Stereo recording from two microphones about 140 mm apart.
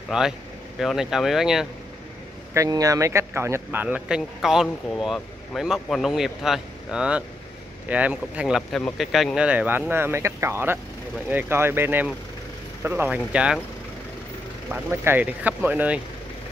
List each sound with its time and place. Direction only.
0.1 s speech: 5° right (ahead or behind)
2.5 s speech: 25° right (ahead or behind); by 13.6 s 10° right (ahead or behind)
14.7 s speech: 15° right (ahead or behind)